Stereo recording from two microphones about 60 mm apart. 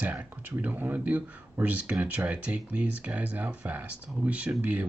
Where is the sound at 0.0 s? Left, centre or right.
Right.